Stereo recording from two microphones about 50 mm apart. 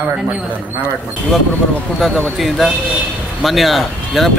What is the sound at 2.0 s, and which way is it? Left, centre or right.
Speech, centre.